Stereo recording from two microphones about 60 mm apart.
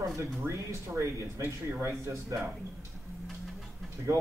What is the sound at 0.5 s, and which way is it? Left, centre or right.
Speech, right.